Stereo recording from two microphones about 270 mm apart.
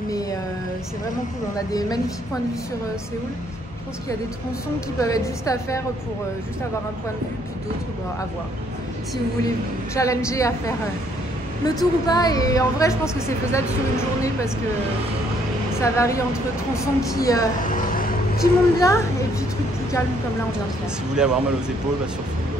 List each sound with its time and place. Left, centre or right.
1.7 s speech: centre
5.0 s speech: centre
9.9 s speech: centre
11.6 s speech: centre
15.8 s speech: centre
17.2 s speech: centre
17.6 s a sound: left
18.4 s speech: centre
21.1 s speech: centre